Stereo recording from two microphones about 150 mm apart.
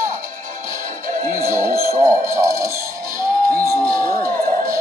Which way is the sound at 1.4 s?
20° right (ahead or behind).